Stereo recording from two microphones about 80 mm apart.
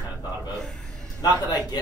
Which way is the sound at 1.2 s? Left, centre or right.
Left.